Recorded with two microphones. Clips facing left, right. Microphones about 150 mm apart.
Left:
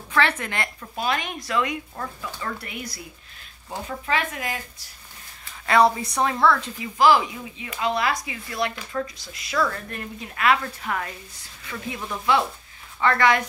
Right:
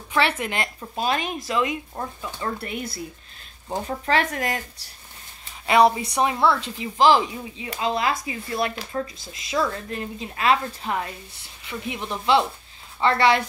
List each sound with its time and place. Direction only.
0.1 s speech: 20° right (ahead or behind)
3.7 s speech: 35° right (ahead or behind)
5.7 s speech: 20° right (ahead or behind)